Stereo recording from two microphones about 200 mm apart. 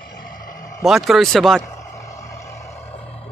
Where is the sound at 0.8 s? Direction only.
Centre (ahead or behind).